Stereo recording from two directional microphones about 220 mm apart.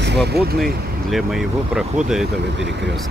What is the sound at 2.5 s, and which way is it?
Speech, 55° right (ahead or behind).